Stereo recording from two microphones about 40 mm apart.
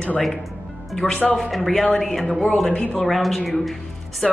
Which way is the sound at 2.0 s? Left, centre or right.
Centre.